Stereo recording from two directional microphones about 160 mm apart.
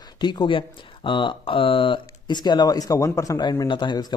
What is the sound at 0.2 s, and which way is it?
Speech, 30° left (ahead or behind).